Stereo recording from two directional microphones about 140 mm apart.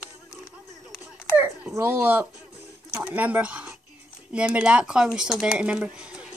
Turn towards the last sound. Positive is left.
turn(degrees=-10)  # may be behind; listen again after turning